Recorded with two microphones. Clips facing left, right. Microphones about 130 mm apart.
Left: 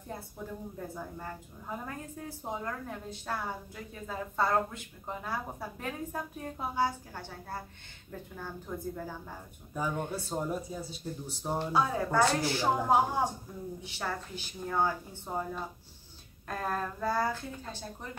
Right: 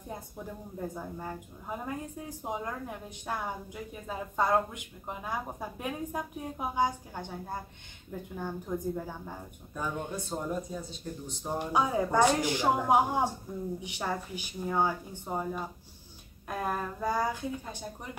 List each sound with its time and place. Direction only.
0.9 s a woman's voice: 15° right (ahead or behind)
9.8 s speech: 5° left (ahead or behind)
11.5 s a woman's voice: 15° right (ahead or behind)